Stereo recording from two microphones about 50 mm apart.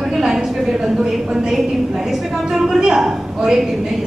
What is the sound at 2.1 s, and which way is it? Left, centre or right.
A woman's voice, centre.